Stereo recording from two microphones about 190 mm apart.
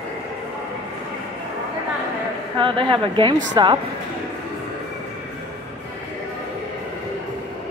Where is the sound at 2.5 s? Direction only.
25° right (ahead or behind).